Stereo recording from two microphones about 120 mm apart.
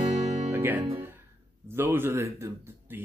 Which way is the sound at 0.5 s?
15° right (ahead or behind).